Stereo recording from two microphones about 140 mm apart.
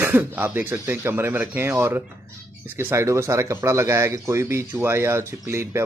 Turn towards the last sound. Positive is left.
turn(degrees=-20)  # may be behind; listen again after turning